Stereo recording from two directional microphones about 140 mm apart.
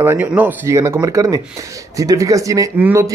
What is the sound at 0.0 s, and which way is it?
Speech, 15° right (ahead or behind).